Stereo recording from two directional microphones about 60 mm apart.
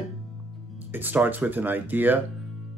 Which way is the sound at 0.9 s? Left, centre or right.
Right.